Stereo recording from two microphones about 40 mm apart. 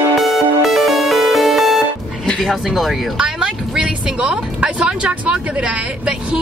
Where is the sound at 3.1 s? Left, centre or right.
Centre.